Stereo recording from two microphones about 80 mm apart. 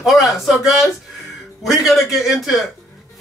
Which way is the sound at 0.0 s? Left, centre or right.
Centre.